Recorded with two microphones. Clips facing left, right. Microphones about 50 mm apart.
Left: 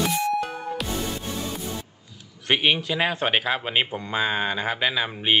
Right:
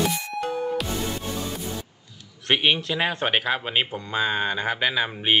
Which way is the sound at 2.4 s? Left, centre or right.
Centre.